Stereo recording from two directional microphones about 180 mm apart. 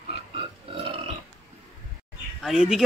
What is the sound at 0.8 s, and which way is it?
Burping, 30° right (ahead or behind).